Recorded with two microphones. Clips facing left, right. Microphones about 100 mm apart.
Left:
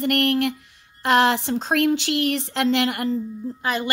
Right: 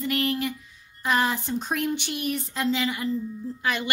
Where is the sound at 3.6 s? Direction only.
35° left (ahead or behind).